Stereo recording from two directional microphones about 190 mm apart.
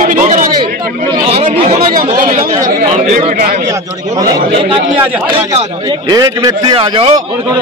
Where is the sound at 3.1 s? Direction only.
40° right (ahead or behind).